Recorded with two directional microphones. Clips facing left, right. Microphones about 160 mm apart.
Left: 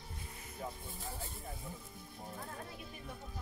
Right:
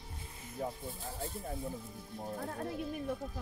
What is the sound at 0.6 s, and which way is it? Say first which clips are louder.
Snake: right 6 dB; 40° right (ahead or behind).